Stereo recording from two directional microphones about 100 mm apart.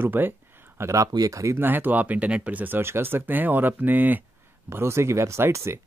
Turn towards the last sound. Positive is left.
turn(degrees=-25)  # may be behind; listen again after turning